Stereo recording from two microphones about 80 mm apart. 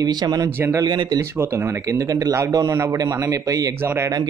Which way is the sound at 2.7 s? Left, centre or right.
Right.